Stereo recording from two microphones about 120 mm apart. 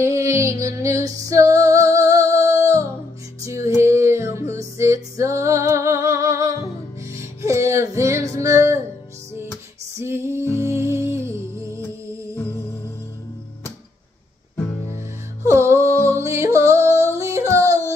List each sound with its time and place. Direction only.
0.0 s music: 25° right (ahead or behind)
9.9 s music: 20° right (ahead or behind)
15.4 s music: 25° right (ahead or behind)